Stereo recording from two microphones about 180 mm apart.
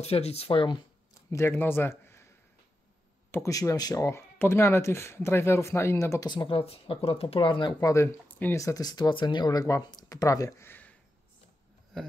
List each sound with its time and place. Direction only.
0.0 s speech: 35° left (ahead or behind)
1.3 s a man's voice: 15° left (ahead or behind)